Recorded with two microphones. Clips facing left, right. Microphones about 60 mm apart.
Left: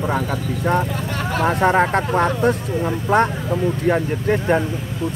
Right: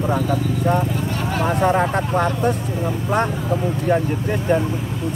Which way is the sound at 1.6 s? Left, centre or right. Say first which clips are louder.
Left 2 dB; left.